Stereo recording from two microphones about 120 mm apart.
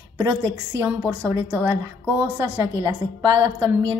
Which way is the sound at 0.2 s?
20° right (ahead or behind).